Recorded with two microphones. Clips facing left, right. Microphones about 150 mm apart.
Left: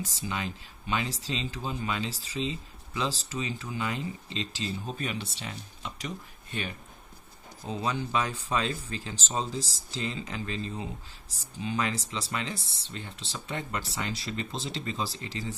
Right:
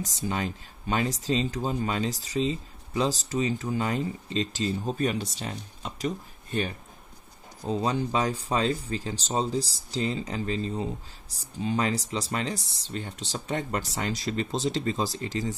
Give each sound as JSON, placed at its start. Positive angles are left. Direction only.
{"t": 0.2, "sound": "speech", "side_deg": -45}